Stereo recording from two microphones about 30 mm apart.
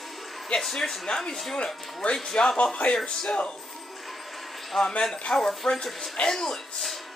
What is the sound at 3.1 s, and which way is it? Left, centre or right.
Speech, left.